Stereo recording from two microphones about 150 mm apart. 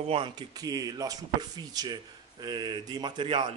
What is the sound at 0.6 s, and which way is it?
Speech, 25° right (ahead or behind).